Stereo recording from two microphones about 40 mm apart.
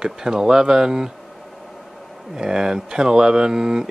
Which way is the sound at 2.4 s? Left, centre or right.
Centre.